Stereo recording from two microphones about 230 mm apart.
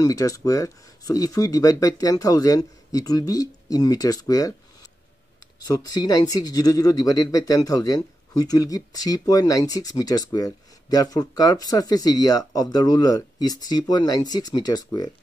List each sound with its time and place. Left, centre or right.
0.0 s speech: centre
5.6 s speech: centre